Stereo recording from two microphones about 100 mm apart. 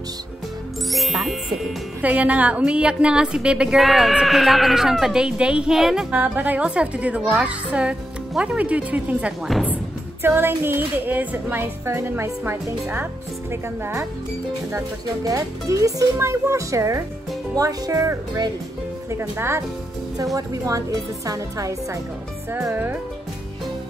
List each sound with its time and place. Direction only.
0.8 s speech: centre (ahead or behind)
2.0 s a woman's voice: 15° right (ahead or behind)
6.1 s a woman's voice: 15° right (ahead or behind)
15.2 s a woman's voice: 35° right (ahead or behind)